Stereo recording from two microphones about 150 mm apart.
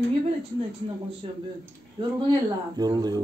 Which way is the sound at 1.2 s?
40° right (ahead or behind).